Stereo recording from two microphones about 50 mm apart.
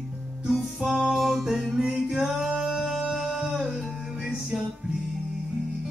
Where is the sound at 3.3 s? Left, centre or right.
Centre.